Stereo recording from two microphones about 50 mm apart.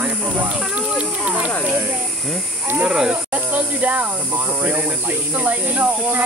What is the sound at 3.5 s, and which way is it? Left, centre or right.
Speech, right.